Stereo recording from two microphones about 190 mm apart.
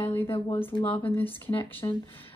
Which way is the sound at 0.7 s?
25° left (ahead or behind).